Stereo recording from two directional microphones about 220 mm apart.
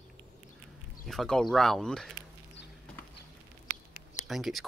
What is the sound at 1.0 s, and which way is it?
Speech, centre (ahead or behind).